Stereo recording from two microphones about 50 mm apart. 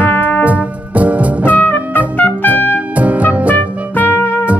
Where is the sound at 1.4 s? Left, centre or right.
Left.